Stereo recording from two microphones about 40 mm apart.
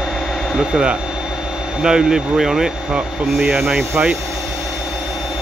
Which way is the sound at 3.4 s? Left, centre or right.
Centre.